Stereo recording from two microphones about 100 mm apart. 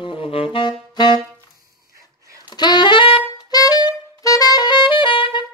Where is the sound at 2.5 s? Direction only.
45° left (ahead or behind).